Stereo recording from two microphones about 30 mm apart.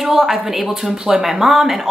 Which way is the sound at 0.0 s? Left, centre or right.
Centre.